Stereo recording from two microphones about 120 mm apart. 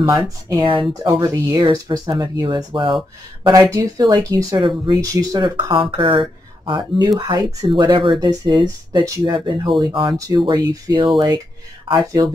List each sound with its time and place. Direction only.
0.5 s speech: 40° right (ahead or behind)
1.2 s speech: 30° right (ahead or behind)
5.7 s speech: 45° right (ahead or behind)